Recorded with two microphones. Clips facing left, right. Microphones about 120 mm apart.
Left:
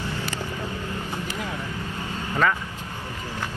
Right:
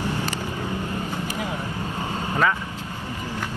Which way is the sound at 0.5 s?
15° right (ahead or behind).